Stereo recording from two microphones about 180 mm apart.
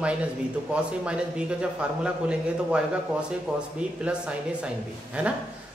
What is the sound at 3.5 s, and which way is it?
Speech, 5° right (ahead or behind).